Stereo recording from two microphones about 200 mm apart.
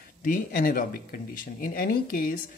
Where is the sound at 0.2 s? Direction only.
45° left (ahead or behind).